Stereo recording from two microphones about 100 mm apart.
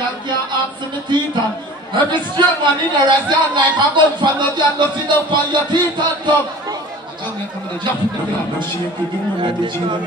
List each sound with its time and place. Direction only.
2.0 s speech: 50° right (ahead or behind)
9.4 s speech: 50° right (ahead or behind)